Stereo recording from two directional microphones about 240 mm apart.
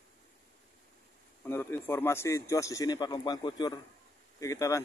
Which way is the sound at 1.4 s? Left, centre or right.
Centre.